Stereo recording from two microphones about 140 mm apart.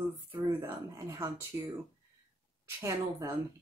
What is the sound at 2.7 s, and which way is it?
Speech, 20° right (ahead or behind).